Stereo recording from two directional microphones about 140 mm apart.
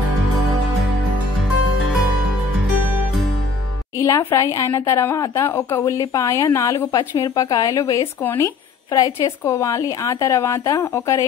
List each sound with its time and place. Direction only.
4.0 s a woman's voice: 20° left (ahead or behind)